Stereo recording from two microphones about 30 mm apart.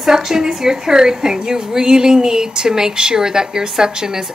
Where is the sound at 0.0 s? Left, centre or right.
Centre.